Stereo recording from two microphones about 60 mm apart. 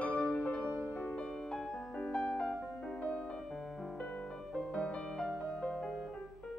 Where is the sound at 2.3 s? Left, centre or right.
Centre.